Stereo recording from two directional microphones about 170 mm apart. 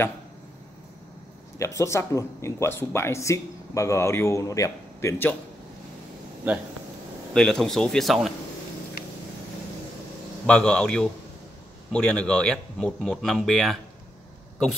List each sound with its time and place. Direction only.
1.6 s speech: 20° left (ahead or behind)
6.5 s speech: 5° right (ahead or behind)
7.3 s speech: 5° left (ahead or behind)
10.4 s speech: 5° left (ahead or behind)